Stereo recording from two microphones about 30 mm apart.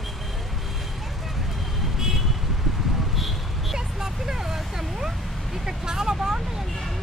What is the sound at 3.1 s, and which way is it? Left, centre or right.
Vehicle, centre.